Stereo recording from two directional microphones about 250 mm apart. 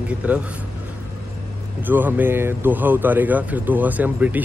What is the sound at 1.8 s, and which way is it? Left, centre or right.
Speech, centre.